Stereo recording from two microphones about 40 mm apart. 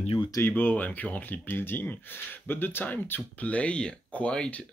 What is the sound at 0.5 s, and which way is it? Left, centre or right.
Speech, left.